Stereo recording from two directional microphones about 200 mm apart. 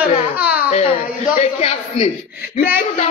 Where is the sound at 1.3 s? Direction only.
35° left (ahead or behind).